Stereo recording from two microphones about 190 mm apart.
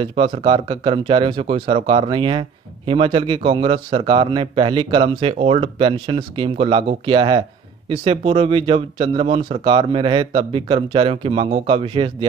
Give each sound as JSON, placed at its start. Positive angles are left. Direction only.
{"t": 0.0, "sound": "speech", "side_deg": -25}